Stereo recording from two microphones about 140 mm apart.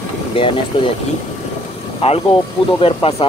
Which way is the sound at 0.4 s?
40° left (ahead or behind).